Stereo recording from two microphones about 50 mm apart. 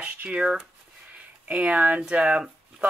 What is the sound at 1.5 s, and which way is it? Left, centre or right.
Speech, right.